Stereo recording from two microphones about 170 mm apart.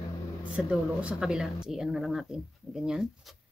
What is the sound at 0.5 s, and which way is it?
A woman's voice, 5° right (ahead or behind).